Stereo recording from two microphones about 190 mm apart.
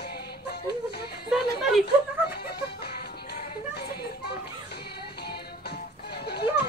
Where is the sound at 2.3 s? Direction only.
55° left (ahead or behind).